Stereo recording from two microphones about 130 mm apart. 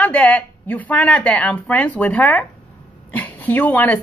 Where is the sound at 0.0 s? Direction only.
10° left (ahead or behind).